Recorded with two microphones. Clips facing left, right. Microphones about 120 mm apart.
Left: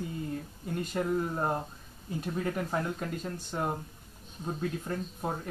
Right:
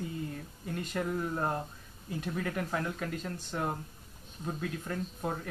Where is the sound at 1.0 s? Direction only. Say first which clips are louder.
Left 3 dB; 20° left (ahead or behind).